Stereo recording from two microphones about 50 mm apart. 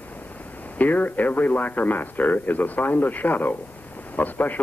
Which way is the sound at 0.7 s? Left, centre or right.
Left.